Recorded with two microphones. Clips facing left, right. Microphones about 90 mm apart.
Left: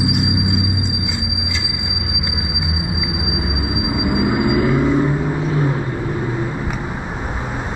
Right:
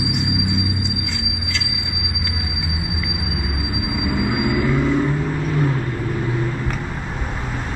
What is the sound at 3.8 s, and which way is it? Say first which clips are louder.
Vehicle: left 4 dB; 15° left (ahead or behind).